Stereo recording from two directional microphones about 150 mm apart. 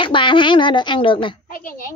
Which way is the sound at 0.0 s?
35° left (ahead or behind).